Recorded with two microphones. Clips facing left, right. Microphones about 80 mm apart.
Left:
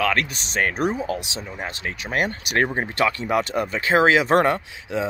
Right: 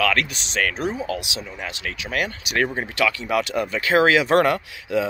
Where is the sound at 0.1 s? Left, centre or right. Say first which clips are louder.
Even; left.